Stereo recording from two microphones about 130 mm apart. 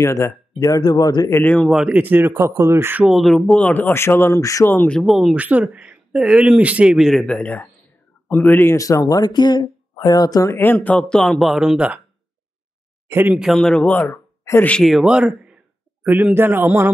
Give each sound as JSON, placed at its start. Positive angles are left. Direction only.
{"t": 0.0, "sound": "speech", "side_deg": 20}
{"t": 1.4, "sound": "speech", "side_deg": 10}
{"t": 1.7, "sound": "speech", "side_deg": -5}
{"t": 3.1, "sound": "speech", "side_deg": 0}
{"t": 4.9, "sound": "speech", "side_deg": 0}
{"t": 13.1, "sound": "speech", "side_deg": -15}
{"t": 13.4, "sound": "speech", "side_deg": 0}
{"t": 14.8, "sound": "speech", "side_deg": 0}